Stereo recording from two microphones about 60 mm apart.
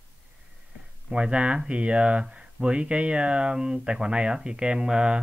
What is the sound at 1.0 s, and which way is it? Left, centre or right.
Speech, centre.